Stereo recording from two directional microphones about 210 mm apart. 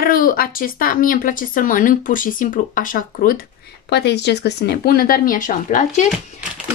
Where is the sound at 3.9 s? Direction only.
55° left (ahead or behind); by 6.0 s 35° left (ahead or behind).